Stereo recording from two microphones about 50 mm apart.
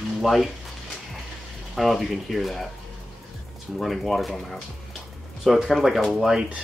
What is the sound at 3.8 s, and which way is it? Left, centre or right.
Speech, centre.